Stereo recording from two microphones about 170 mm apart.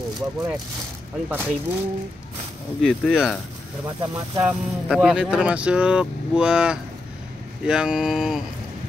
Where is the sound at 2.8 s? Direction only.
Centre (ahead or behind).